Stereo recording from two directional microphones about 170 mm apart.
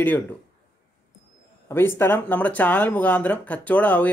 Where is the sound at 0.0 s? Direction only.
10° left (ahead or behind).